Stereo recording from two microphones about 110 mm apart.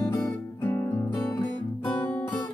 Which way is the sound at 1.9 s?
15° left (ahead or behind).